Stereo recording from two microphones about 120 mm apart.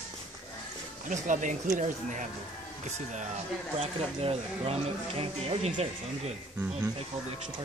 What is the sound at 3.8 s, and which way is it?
Speech, 55° right (ahead or behind).